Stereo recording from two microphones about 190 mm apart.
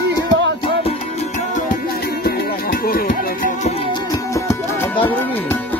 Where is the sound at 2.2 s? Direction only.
50° left (ahead or behind).